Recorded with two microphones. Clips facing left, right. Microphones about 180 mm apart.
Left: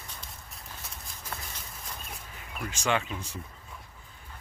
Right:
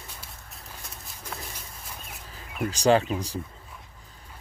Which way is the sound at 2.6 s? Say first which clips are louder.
Right 9 dB; 35° right (ahead or behind).